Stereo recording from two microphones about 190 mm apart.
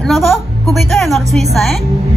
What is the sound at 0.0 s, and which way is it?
Music, centre (ahead or behind).